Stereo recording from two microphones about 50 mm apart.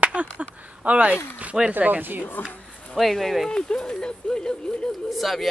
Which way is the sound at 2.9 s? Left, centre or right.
Centre.